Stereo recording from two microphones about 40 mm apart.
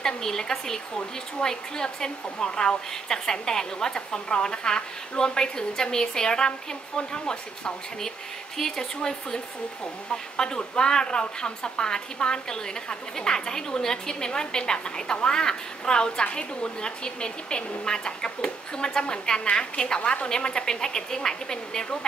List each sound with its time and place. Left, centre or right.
0.0 s a woman's voice: centre